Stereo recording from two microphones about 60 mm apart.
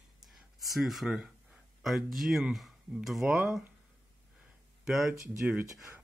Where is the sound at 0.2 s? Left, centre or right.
Centre.